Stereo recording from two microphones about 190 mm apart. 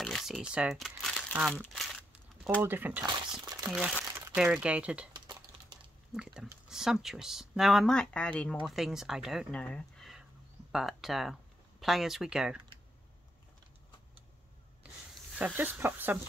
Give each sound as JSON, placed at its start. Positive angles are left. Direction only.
{"t": 0.0, "sound": "crumpling", "side_deg": 0}
{"t": 2.6, "sound": "speech", "side_deg": -10}
{"t": 3.1, "sound": "speech", "side_deg": -20}
{"t": 4.0, "sound": "speech", "side_deg": -10}
{"t": 5.1, "sound": "typing", "side_deg": -20}
{"t": 6.1, "sound": "speech", "side_deg": -5}
{"t": 15.3, "sound": "speech", "side_deg": -10}